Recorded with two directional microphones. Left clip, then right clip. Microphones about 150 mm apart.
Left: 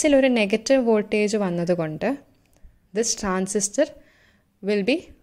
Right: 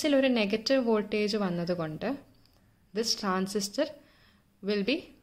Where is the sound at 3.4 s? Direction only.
40° left (ahead or behind).